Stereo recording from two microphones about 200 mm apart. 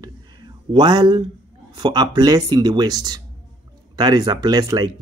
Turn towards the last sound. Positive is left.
turn(degrees=-20)  # may be behind; listen again after turning